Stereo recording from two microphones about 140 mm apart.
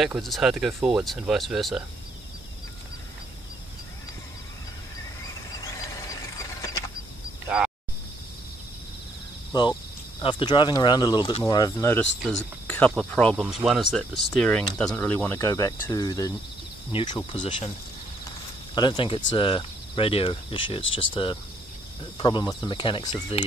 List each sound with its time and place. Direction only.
0.0 s speech: centre (ahead or behind)
5.2 s vehicle: 25° left (ahead or behind)
7.4 s a sound: 5° right (ahead or behind)
9.5 s speech: 30° left (ahead or behind)
12.3 s speech: 10° left (ahead or behind); by 17.7 s 35° left (ahead or behind)
18.8 s speech: 35° left (ahead or behind)